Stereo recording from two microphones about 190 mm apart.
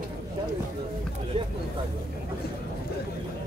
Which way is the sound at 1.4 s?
30° right (ahead or behind).